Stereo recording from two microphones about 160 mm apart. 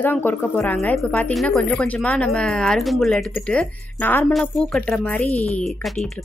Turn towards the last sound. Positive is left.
turn(degrees=0)  # may be behind; listen again after turning